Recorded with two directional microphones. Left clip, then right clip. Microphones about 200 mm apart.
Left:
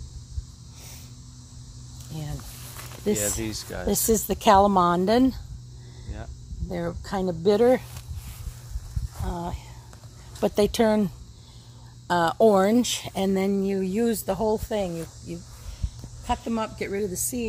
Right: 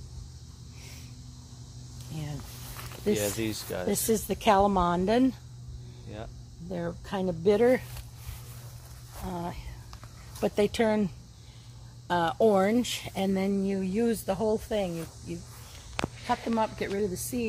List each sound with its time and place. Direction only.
2.1 s cricket: 50° left (ahead or behind)
3.3 s speech: 5° left (ahead or behind)
3.8 s speech: 50° left (ahead or behind)
6.7 s speech: 45° left (ahead or behind)
9.2 s speech: 30° left (ahead or behind)
10.4 s speech: 50° left (ahead or behind)
12.1 s speech: 55° left (ahead or behind)
16.3 s speech: 30° left (ahead or behind)